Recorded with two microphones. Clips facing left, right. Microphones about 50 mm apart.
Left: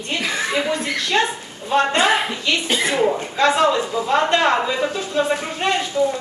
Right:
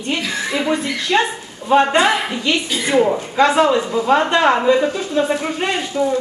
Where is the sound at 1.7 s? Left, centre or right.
Right.